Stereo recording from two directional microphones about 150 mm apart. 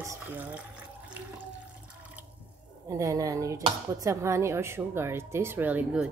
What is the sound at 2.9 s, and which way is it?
A woman's voice, 20° right (ahead or behind).